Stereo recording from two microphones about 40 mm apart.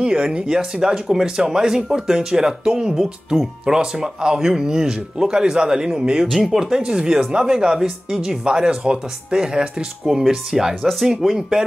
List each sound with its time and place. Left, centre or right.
0.0 s speech: right
6.4 s speech: centre